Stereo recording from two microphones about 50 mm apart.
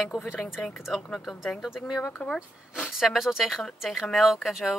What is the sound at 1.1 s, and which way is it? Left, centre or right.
Speech, centre.